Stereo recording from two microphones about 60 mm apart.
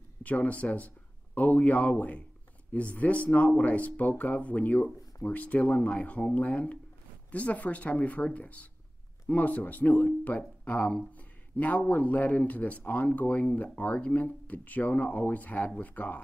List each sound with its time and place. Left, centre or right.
0.2 s speech: left
10.6 s a sound: left
11.1 s speech: left